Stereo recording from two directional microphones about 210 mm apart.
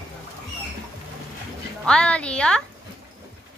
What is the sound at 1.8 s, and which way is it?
Speech, 5° left (ahead or behind).